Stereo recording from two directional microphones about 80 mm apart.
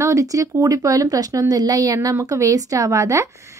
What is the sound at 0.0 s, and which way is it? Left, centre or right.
A woman's voice, right.